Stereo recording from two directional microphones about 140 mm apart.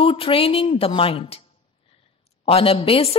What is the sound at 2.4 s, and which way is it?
Speech, 40° left (ahead or behind).